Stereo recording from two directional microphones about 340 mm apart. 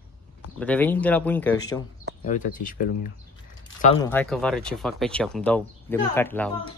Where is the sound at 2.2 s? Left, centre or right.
Left.